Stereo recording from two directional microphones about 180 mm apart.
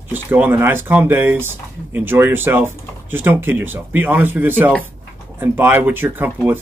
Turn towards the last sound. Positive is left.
turn(degrees=-10)  # may be behind; listen again after turning